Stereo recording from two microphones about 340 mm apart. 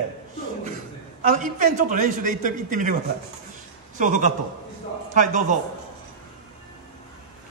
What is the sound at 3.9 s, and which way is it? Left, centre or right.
Speech, right.